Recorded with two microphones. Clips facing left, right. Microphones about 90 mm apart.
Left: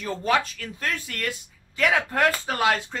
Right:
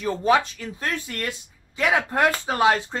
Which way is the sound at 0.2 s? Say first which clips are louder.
Right 3 dB; 20° right (ahead or behind).